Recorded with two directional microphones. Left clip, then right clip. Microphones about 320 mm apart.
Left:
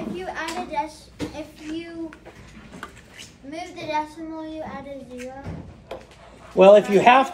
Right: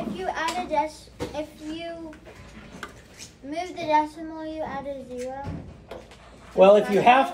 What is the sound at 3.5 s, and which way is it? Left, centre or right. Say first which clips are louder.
Speech: right 5 dB; right.